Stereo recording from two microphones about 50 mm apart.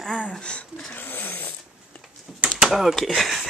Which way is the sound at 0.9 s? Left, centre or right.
Left.